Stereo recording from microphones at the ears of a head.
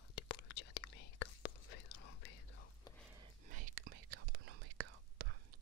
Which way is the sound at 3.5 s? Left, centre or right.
Right.